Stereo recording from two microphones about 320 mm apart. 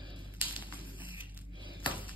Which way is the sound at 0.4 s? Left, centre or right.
Centre.